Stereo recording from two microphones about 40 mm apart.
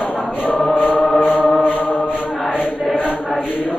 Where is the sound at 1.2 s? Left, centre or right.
Centre.